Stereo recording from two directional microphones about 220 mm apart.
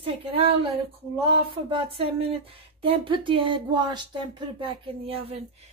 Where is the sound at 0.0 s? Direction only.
25° right (ahead or behind).